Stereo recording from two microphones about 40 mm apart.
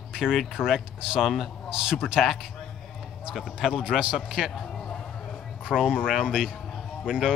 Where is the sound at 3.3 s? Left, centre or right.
Centre.